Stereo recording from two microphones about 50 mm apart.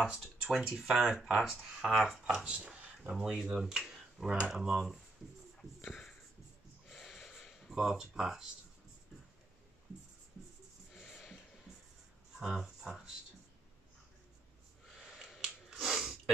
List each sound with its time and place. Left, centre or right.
0.0 s speech: centre
2.2 s speech: centre
3.0 s speech: centre
3.8 s computer keyboard: centre
4.3 s speech: centre
6.9 s snort: centre
7.7 s speech: centre
11.0 s a sound: centre
12.4 s speech: centre
15.0 s finger snapping: centre